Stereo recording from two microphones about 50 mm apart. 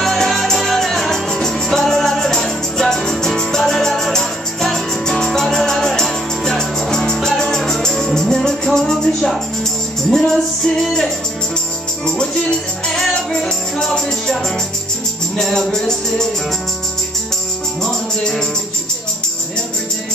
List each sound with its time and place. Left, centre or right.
0.0 s music: centre
12.2 s music: centre
17.8 s music: centre